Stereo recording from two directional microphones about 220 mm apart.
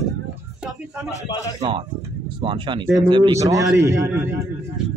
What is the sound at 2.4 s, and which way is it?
Speech, 20° right (ahead or behind).